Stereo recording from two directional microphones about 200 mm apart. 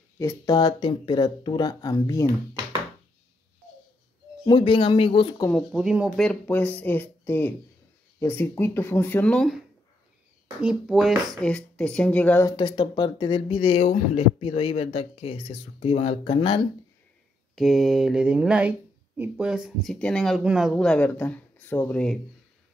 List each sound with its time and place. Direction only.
0.2 s speech: 15° left (ahead or behind)
4.5 s speech: 25° left (ahead or behind)
5.4 s speech: 5° left (ahead or behind)
6.2 s speech: 10° left (ahead or behind)
10.6 s speech: 5° right (ahead or behind)
12.5 s speech: 25° left (ahead or behind)
17.6 s speech: centre (ahead or behind)